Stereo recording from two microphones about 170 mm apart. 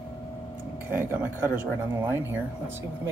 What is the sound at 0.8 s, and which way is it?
Speech, 10° right (ahead or behind).